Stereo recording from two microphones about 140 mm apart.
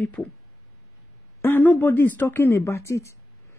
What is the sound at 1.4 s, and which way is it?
Speech, 10° left (ahead or behind).